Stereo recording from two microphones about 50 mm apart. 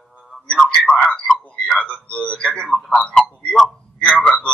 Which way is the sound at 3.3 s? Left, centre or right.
Left.